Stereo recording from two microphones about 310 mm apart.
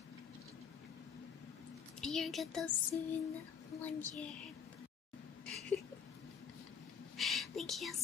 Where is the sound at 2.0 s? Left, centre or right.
Centre.